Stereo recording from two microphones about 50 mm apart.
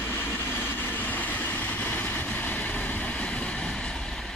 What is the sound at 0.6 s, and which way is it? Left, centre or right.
Vehicle, left.